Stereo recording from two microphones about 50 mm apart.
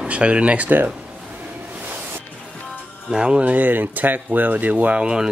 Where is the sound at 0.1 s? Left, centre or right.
Right.